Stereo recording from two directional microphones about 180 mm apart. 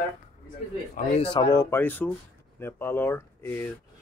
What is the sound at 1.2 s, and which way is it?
Speech, 30° left (ahead or behind).